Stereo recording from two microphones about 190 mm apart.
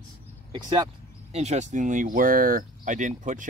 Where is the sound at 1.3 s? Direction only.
35° right (ahead or behind).